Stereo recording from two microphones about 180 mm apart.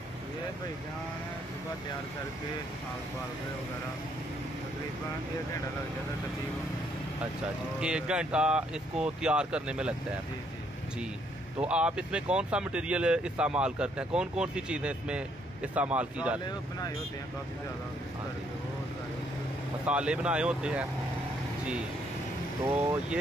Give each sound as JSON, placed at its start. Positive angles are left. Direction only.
{"t": 7.8, "sound": "speech", "side_deg": -5}
{"t": 11.6, "sound": "speech", "side_deg": -5}
{"t": 19.9, "sound": "speech", "side_deg": -5}
{"t": 22.7, "sound": "speech", "side_deg": -10}